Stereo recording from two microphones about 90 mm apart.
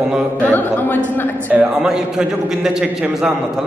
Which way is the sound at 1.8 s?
5° right (ahead or behind).